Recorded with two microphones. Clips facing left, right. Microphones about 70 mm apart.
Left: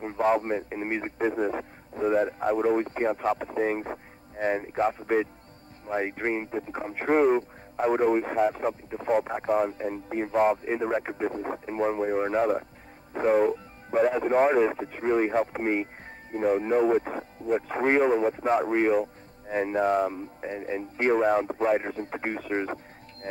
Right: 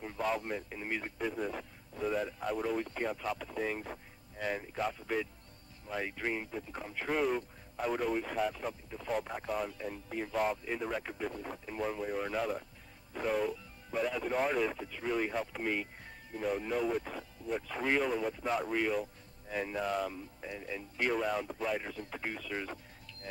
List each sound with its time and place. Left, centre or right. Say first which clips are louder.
0.0 s speech: left 10 dB; left